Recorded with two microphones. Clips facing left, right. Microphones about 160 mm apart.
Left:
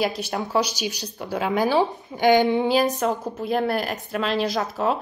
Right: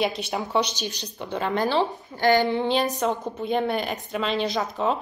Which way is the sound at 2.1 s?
15° left (ahead or behind).